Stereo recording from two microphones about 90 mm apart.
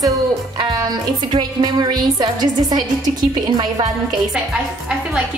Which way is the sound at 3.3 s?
60° right (ahead or behind).